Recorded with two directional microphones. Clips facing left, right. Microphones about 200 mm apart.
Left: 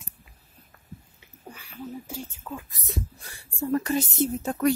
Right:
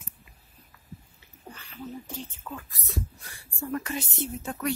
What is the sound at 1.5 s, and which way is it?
Speech, 10° left (ahead or behind).